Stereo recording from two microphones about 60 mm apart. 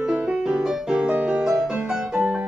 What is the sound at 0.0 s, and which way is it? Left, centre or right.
Music, centre.